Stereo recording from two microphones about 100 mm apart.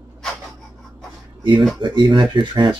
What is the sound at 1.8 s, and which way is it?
Speech, 50° right (ahead or behind).